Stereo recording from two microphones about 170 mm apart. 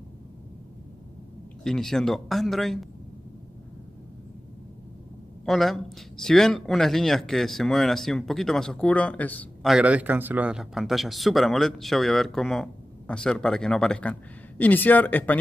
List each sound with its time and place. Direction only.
1.6 s speech: 5° left (ahead or behind)
5.4 s speech: centre (ahead or behind)
9.7 s speech: 5° right (ahead or behind); by 15.3 s 10° left (ahead or behind)